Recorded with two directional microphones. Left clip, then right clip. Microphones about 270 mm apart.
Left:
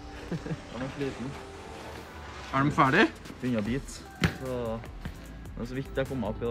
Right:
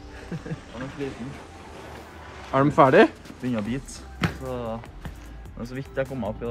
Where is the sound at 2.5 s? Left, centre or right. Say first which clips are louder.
Right 7 dB; centre.